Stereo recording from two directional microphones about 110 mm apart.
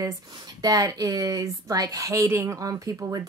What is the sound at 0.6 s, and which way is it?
Speech, 35° right (ahead or behind).